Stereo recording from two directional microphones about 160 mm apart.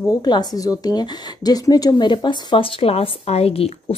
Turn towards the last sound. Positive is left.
turn(degrees=40)  # may be behind; listen again after turning